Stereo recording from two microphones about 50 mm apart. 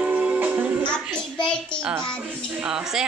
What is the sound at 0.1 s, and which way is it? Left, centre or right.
Music, right.